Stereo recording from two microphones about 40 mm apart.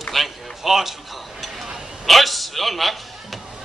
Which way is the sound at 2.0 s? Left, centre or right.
Centre.